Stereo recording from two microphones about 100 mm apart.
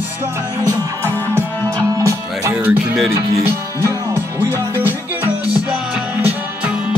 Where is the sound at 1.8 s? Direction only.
30° right (ahead or behind).